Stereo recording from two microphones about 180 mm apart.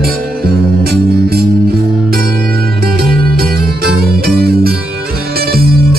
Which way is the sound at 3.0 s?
55° right (ahead or behind).